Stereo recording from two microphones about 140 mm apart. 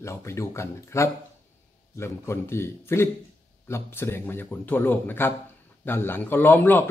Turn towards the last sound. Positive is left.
turn(degrees=15)  # may be behind; listen again after turning